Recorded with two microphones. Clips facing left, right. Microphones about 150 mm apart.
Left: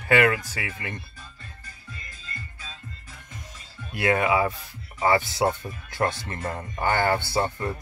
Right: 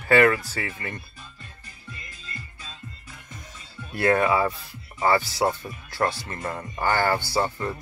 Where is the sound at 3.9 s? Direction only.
10° left (ahead or behind).